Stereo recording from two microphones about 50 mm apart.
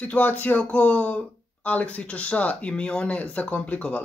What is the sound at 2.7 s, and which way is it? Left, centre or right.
Speech, centre.